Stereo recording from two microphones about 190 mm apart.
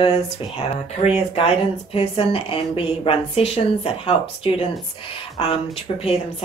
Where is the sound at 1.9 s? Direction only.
30° left (ahead or behind).